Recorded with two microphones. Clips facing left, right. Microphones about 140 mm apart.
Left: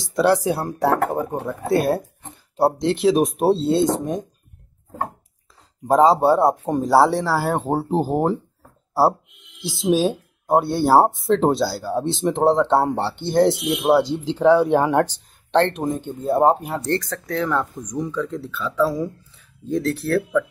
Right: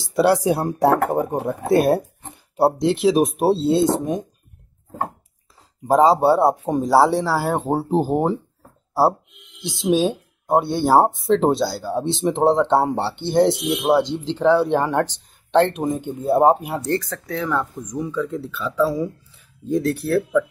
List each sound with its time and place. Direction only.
0.1 s speech: 10° right (ahead or behind)
5.9 s speech: centre (ahead or behind)
9.6 s speech: centre (ahead or behind)
15.5 s speech: 5° right (ahead or behind)